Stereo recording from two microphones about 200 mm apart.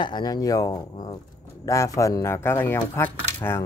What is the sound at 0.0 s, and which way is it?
Speech, 20° left (ahead or behind).